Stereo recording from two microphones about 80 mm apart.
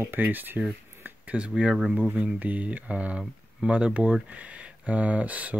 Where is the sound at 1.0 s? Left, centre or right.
Centre.